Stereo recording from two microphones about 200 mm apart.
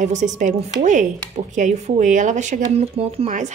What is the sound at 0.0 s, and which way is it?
Speech, 35° right (ahead or behind).